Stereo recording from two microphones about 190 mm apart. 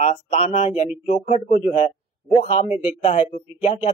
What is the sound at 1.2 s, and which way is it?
Speech, 50° left (ahead or behind).